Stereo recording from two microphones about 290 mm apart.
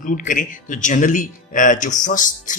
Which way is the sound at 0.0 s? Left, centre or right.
Left.